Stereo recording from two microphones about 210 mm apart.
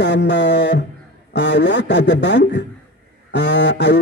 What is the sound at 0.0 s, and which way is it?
A man's voice, 55° left (ahead or behind).